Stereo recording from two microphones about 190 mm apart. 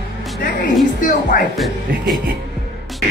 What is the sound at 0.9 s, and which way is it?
Speech, 45° left (ahead or behind).